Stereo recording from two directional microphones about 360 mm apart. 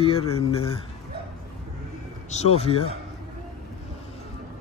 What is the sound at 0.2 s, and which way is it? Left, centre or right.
Speech, left.